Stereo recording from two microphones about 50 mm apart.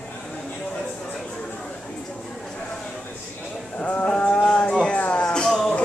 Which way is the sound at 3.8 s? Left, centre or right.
Left.